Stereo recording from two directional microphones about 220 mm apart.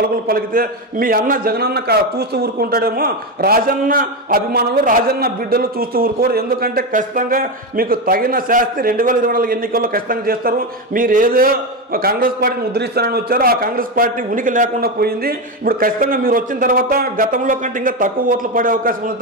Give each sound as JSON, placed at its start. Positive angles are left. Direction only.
{"t": 0.0, "sound": "a man's voice", "side_deg": -40}